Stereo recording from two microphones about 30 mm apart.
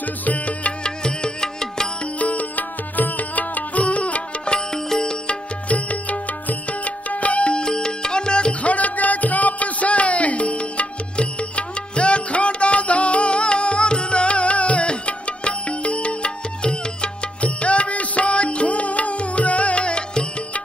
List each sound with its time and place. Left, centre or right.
0.0 s music: left
0.8 s music: left
2.1 s music: left
3.8 s music: left
4.7 s music: centre
5.3 s music: left
7.5 s music: left
8.6 s music: left